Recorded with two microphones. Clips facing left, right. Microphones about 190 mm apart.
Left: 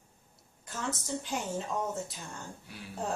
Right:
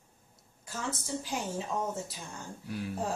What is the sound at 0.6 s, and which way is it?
A woman's voice, centre (ahead or behind).